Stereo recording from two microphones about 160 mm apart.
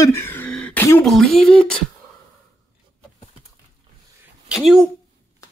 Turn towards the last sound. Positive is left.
turn(degrees=0)  # may be behind; listen again after turning